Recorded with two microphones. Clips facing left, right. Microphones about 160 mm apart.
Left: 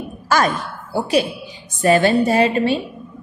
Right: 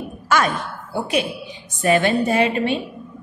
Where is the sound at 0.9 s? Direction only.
35° left (ahead or behind).